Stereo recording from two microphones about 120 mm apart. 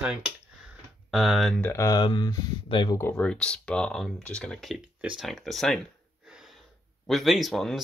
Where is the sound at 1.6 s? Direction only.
25° left (ahead or behind).